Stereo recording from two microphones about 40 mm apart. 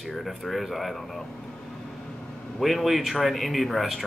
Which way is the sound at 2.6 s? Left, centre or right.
Centre.